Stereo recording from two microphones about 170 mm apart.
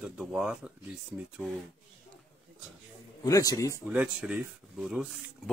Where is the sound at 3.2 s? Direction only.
20° left (ahead or behind).